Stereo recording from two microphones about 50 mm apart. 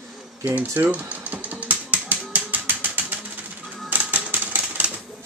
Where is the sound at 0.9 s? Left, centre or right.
Right.